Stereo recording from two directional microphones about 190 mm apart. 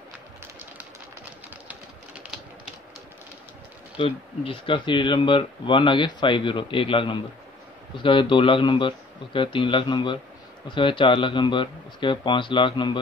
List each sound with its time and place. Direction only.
1.7 s typing: 5° right (ahead or behind)
4.0 s speech: 25° left (ahead or behind)